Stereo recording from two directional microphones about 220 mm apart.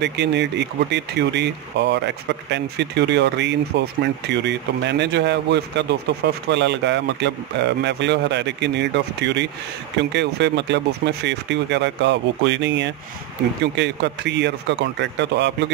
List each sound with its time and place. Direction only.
0.0 s speech: 50° right (ahead or behind)